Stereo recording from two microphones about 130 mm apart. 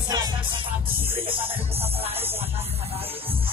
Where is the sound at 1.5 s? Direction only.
50° right (ahead or behind).